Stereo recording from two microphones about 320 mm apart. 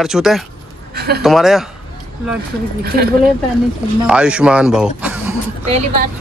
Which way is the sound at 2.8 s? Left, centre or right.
Right.